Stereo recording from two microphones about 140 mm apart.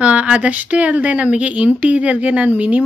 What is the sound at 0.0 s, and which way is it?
Speech, 10° right (ahead or behind).